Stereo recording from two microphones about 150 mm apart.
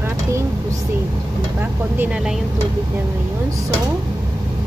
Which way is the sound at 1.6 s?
10° right (ahead or behind).